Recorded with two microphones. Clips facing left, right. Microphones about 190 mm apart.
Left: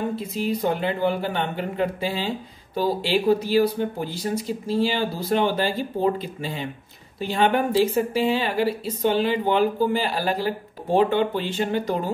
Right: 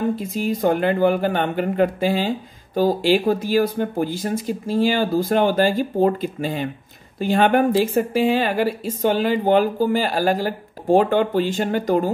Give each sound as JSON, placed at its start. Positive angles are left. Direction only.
{"t": 0.1, "sound": "speech", "side_deg": -45}